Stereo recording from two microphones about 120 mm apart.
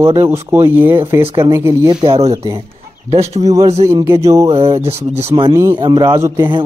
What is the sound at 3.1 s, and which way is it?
Speech, 65° right (ahead or behind).